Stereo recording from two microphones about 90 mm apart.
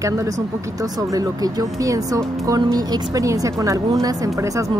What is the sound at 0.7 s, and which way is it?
A woman's voice, 40° right (ahead or behind).